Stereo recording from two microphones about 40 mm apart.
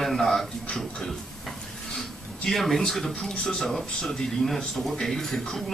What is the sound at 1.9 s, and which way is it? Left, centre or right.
Speech, centre.